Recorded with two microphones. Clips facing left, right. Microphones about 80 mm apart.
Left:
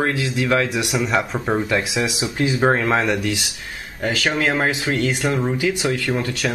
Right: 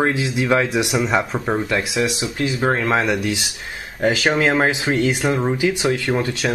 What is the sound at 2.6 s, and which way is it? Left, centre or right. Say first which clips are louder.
Speech: even; centre.